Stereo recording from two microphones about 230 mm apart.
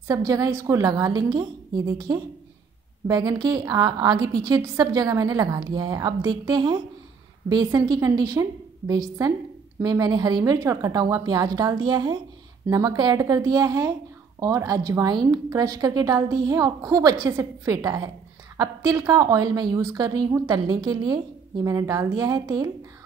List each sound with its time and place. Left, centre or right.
0.1 s a woman's voice: centre